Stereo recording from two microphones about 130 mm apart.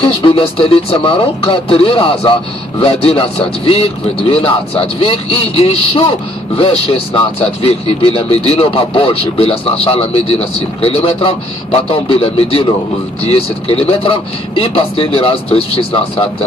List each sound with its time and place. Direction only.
0.0 s a man's voice: 45° left (ahead or behind)